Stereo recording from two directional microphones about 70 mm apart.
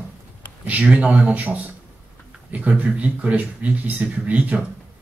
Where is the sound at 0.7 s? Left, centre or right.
Right.